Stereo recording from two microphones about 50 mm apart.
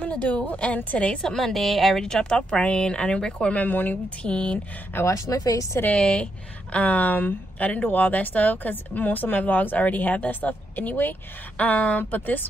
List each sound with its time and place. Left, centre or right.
0.0 s a sound: left
0.5 s a woman's voice: left
1.2 s a woman's voice: centre
2.0 s a woman's voice: centre
3.6 s speech: left
5.0 s a woman's voice: left
5.9 s speech: centre
6.7 s speech: left